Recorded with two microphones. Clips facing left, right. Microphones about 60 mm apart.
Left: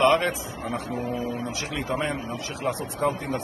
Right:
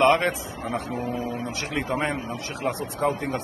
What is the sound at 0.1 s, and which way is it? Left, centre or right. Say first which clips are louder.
A man's voice: right 1 dB; right.